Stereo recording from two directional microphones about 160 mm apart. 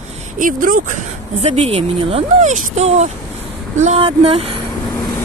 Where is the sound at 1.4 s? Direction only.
40° right (ahead or behind).